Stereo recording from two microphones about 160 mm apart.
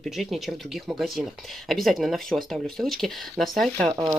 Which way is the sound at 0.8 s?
Centre (ahead or behind).